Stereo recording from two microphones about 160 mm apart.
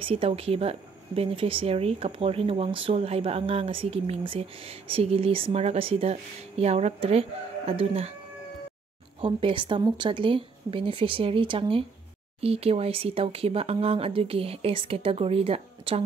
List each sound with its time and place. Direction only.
0.0 s a woman's voice: 35° right (ahead or behind)
9.2 s a woman's voice: 30° right (ahead or behind)